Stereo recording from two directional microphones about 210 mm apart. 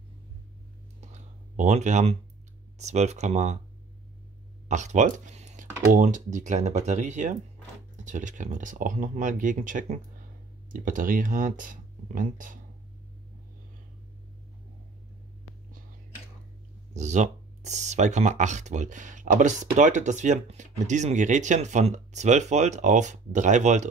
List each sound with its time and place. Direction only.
1.6 s speech: 35° right (ahead or behind)
4.6 s speech: 35° right (ahead or behind)
16.9 s speech: 35° right (ahead or behind)